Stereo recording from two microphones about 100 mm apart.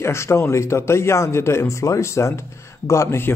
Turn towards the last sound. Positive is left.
turn(degrees=25)  # may be behind; listen again after turning